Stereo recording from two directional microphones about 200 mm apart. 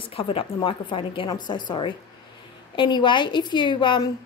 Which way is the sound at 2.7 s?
25° left (ahead or behind).